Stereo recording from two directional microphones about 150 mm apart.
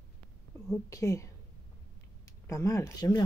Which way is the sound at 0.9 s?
20° left (ahead or behind).